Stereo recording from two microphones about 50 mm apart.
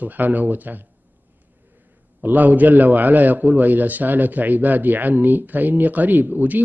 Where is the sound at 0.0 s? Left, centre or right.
Right.